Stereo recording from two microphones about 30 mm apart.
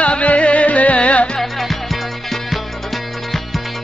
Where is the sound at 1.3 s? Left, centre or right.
Centre.